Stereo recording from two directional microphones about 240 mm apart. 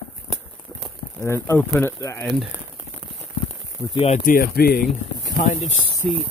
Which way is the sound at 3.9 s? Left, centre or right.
Left.